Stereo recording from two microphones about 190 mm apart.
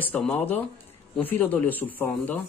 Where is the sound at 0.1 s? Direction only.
10° left (ahead or behind).